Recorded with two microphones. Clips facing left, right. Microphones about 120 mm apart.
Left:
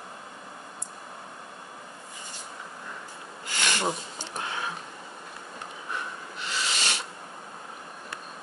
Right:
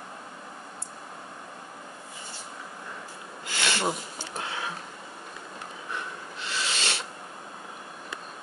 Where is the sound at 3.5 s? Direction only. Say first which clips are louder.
Even; 15° left (ahead or behind).